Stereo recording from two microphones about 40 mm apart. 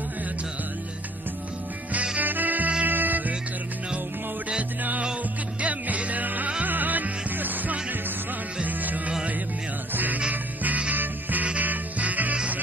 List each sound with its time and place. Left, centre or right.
2.1 s music: right
5.6 s music: right